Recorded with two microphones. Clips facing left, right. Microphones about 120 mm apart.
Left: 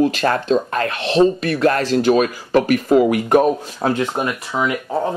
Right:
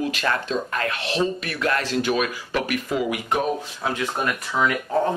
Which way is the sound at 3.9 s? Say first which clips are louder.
Left 5 dB; 20° left (ahead or behind).